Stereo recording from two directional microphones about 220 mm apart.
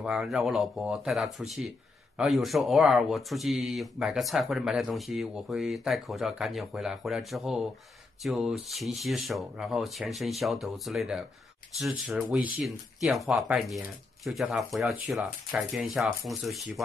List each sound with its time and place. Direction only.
0.0 s speech: 5° right (ahead or behind)